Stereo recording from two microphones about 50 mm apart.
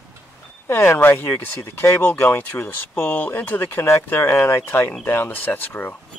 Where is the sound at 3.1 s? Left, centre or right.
Left.